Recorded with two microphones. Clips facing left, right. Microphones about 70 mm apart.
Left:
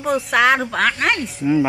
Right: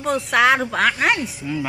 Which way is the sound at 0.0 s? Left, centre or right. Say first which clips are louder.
Left 1 dB; centre.